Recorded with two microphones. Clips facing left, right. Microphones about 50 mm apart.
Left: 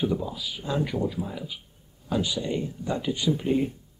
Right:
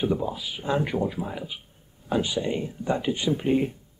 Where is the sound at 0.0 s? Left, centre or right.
Right.